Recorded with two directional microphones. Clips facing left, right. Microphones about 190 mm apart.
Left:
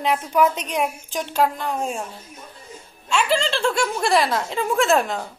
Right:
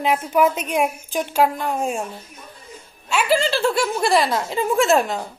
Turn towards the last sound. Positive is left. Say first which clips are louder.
# right 2 dB
turn(degrees=0)  # may be behind; listen again after turning